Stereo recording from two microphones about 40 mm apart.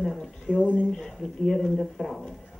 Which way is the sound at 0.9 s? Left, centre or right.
Centre.